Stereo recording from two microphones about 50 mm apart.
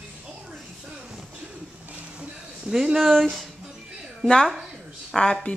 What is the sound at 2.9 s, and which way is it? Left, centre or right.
Speech, centre.